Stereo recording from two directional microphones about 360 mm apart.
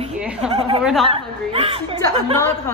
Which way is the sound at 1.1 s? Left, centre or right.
Centre.